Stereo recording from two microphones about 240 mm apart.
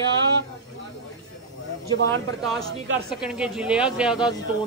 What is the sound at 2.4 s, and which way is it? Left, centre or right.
Speech, centre.